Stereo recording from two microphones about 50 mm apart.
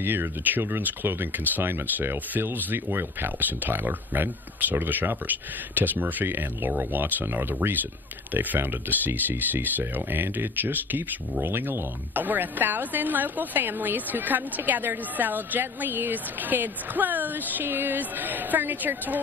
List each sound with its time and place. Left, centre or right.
0.0 s a woman's voice: right